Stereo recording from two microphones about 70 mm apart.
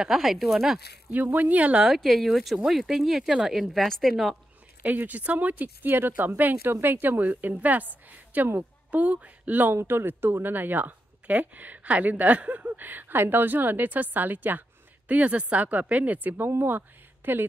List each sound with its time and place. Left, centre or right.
0.0 s speech: centre
1.1 s speech: right
2.0 s speech: centre
4.8 s speech: right